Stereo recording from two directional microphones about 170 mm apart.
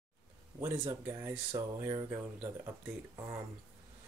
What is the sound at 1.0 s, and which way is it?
Speech, 15° right (ahead or behind).